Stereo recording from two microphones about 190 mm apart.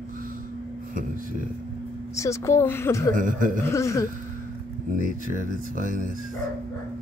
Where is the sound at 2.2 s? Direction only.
15° left (ahead or behind).